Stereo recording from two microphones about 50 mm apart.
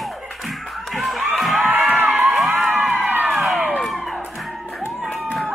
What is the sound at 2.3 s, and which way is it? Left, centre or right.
Crowd, centre.